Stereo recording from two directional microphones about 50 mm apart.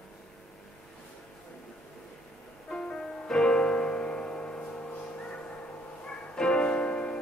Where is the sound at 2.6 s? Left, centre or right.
Centre.